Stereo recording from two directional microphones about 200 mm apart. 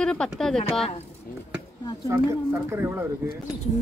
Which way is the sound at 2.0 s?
15° right (ahead or behind).